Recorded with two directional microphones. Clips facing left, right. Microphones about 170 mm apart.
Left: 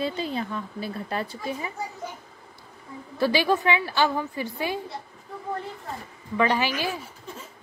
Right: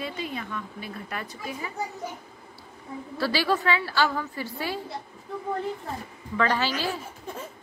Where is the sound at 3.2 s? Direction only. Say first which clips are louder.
Left 3 dB; 20° left (ahead or behind).